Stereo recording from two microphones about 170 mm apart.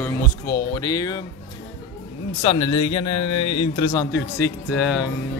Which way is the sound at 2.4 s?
30° left (ahead or behind).